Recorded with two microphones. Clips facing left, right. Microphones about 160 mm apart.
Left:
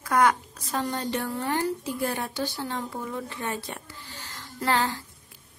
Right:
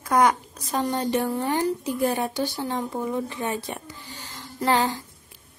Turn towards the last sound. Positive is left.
turn(degrees=-20)  # may be behind; listen again after turning